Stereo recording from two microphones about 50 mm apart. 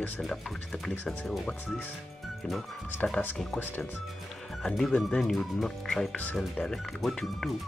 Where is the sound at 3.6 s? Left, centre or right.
Left.